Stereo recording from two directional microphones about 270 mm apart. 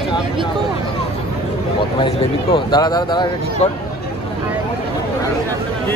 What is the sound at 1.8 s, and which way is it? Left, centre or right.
Speech, centre.